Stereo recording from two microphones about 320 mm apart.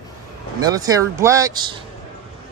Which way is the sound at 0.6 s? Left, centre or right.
Centre.